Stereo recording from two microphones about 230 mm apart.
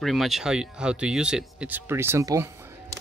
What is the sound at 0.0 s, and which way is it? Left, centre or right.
Speech, centre.